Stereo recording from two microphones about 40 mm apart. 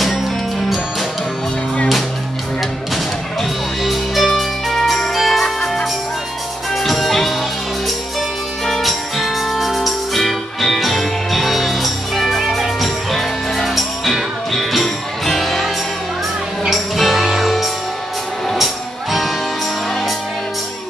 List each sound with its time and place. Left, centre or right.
2.9 s music: centre
8.8 s music: centre